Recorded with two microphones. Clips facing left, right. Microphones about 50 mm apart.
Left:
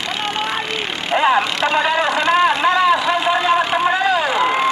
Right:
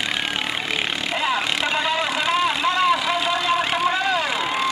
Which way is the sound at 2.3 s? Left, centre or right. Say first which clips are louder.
Left 6 dB; left.